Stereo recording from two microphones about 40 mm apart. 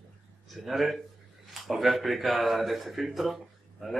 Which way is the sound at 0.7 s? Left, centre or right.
Centre.